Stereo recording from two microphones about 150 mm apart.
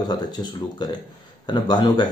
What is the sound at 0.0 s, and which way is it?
Speech, 30° left (ahead or behind).